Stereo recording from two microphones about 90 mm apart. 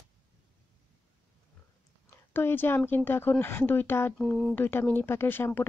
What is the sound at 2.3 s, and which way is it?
Speech, 20° left (ahead or behind).